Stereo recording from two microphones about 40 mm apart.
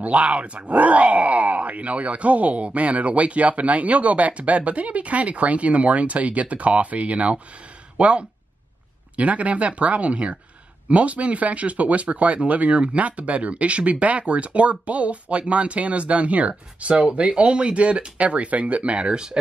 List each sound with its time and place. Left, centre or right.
0.0 s speech: right